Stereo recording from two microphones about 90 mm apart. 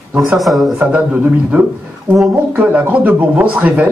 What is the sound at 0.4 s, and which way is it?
Speech, centre (ahead or behind).